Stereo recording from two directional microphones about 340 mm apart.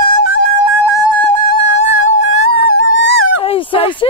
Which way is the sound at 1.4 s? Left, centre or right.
Right.